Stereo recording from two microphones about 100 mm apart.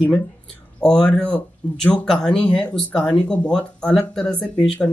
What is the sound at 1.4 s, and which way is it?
Speech, 15° left (ahead or behind).